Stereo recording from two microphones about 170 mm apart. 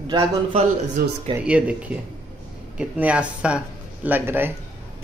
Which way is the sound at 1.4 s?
5° right (ahead or behind).